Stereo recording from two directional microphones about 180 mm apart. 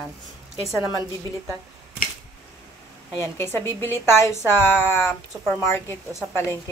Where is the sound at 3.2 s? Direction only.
15° left (ahead or behind).